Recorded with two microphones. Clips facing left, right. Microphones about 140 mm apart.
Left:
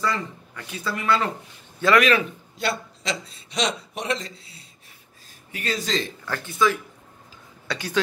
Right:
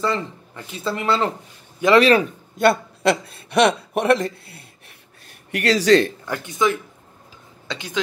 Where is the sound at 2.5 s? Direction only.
55° right (ahead or behind).